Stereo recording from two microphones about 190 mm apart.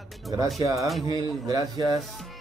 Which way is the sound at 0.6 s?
15° right (ahead or behind).